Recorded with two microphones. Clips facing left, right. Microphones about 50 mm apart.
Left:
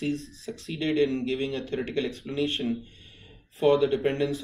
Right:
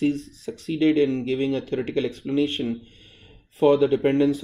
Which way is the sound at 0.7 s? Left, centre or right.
Right.